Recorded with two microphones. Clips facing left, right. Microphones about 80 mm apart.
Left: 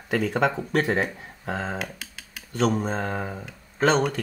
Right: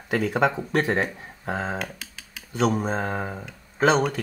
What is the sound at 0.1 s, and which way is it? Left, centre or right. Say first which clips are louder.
Speech: right 1 dB; centre.